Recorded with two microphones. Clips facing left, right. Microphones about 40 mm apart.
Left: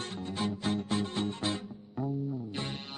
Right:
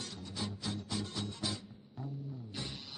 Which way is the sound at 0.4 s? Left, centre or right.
Left.